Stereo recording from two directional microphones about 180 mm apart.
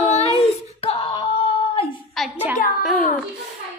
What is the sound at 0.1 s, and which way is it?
Wail, 35° left (ahead or behind).